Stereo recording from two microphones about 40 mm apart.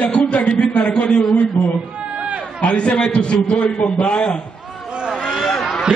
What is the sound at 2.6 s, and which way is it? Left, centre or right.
A man's voice, left.